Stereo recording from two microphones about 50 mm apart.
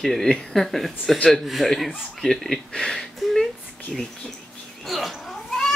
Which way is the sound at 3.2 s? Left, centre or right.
Centre.